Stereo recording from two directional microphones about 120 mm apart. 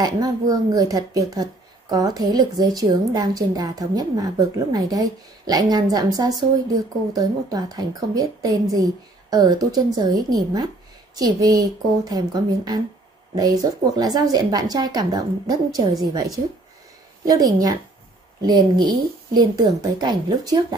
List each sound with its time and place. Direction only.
0.0 s speech: 30° right (ahead or behind)